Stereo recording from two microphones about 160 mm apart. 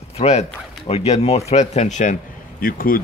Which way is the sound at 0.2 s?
45° left (ahead or behind).